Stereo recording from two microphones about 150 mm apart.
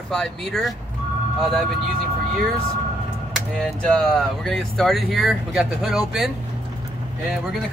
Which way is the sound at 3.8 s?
5° left (ahead or behind).